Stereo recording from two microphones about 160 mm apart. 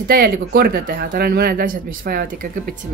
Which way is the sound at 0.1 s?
70° right (ahead or behind).